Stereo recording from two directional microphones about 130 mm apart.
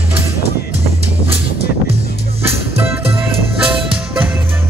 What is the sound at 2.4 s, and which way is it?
Music, 15° right (ahead or behind).